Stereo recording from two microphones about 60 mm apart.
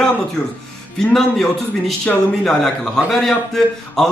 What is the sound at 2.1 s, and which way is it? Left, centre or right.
Speech, centre.